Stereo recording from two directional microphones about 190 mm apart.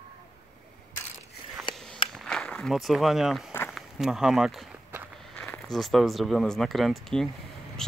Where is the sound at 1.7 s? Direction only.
25° left (ahead or behind).